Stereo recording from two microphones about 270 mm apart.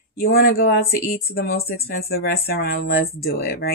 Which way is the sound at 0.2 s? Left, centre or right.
Left.